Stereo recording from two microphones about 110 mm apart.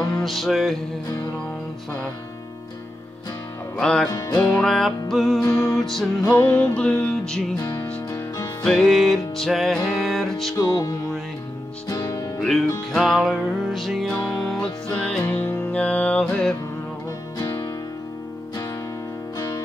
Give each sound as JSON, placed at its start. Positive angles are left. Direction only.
{"t": 0.1, "sound": "music", "side_deg": 0}
{"t": 3.7, "sound": "music", "side_deg": 5}
{"t": 4.1, "sound": "music", "side_deg": 35}
{"t": 4.4, "sound": "music", "side_deg": 10}
{"t": 5.4, "sound": "music", "side_deg": 20}
{"t": 5.8, "sound": "music", "side_deg": 0}
{"t": 6.2, "sound": "music", "side_deg": 20}
{"t": 7.5, "sound": "music", "side_deg": 30}
{"t": 8.6, "sound": "music", "side_deg": 5}
{"t": 10.6, "sound": "music", "side_deg": 35}
{"t": 12.4, "sound": "music", "side_deg": 5}
{"t": 17.4, "sound": "music", "side_deg": 30}